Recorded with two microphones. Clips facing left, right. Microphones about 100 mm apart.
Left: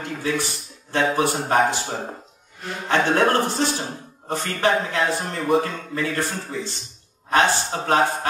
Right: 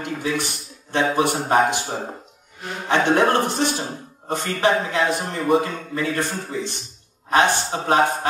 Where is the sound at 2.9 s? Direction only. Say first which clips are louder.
Right 1 dB; 15° right (ahead or behind).